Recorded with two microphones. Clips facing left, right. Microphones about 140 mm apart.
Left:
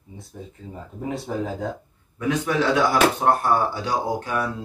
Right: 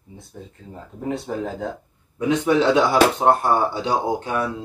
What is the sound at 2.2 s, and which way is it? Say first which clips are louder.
Speech: right 4 dB; 25° right (ahead or behind).